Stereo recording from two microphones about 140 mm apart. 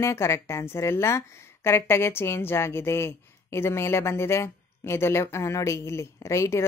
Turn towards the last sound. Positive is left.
turn(degrees=20)  # may be behind; listen again after turning